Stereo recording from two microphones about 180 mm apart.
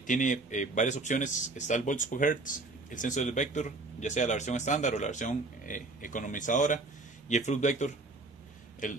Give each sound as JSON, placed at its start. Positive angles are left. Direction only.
{"t": 0.0, "sound": "speech", "side_deg": 45}